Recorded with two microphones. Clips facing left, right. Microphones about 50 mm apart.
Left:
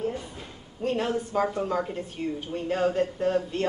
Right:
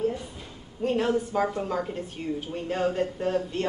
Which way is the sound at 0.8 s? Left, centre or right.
Centre.